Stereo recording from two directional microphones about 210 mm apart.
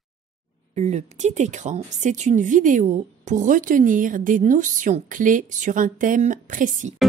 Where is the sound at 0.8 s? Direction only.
30° right (ahead or behind).